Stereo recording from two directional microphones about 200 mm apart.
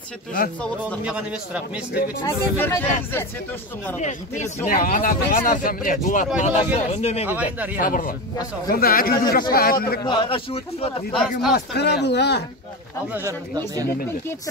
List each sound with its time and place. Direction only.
1.0 s a man's voice: 5° right (ahead or behind)
2.2 s speech: 15° left (ahead or behind)
4.6 s speech: 45° left (ahead or behind)
7.2 s speech: 10° right (ahead or behind)
7.7 s a man's voice: 45° left (ahead or behind)
10.0 s a man's voice: 25° left (ahead or behind)
11.1 s a man's voice: 5° left (ahead or behind)
11.5 s speech: 55° left (ahead or behind)
13.1 s speech: 15° right (ahead or behind)